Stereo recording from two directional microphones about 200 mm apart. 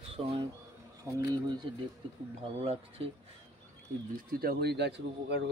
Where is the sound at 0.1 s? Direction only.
30° right (ahead or behind).